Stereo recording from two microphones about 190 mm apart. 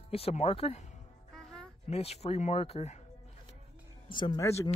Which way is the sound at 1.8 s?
35° left (ahead or behind).